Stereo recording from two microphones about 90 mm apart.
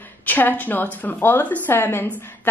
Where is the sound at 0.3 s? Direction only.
20° left (ahead or behind).